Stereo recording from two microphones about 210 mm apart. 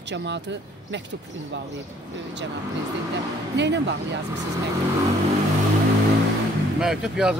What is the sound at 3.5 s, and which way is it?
Speech, 55° right (ahead or behind).